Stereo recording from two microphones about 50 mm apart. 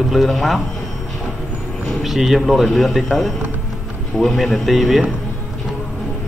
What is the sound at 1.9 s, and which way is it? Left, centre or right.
A man's voice, centre.